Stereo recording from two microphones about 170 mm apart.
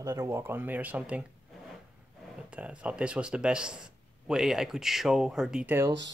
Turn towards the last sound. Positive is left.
turn(degrees=-15)  # may be behind; listen again after turning